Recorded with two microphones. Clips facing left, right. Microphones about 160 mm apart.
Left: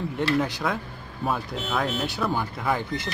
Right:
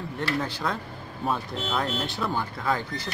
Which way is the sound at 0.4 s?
15° left (ahead or behind).